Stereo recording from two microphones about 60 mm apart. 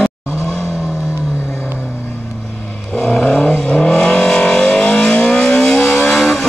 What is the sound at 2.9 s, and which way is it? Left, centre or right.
Vehicle, centre.